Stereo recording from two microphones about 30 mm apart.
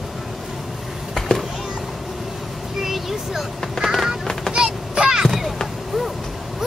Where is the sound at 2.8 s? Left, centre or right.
Centre.